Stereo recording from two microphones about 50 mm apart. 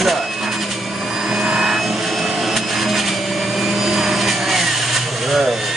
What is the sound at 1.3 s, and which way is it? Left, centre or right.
Vacuum cleaner, centre.